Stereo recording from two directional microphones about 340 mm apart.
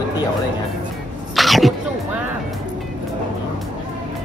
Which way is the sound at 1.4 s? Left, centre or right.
Centre.